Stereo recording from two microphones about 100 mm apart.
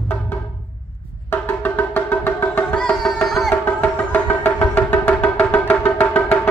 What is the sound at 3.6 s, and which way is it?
Music, 20° left (ahead or behind).